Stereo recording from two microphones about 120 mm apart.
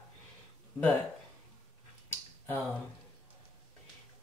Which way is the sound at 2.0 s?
15° left (ahead or behind).